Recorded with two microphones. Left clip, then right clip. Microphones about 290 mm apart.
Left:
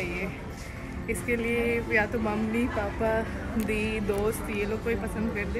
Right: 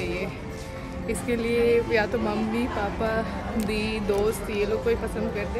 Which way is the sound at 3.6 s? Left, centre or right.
Centre.